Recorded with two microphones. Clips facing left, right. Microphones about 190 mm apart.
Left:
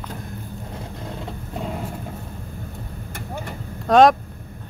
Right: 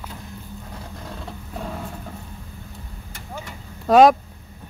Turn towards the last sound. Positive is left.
turn(degrees=-5)  # may be behind; listen again after turning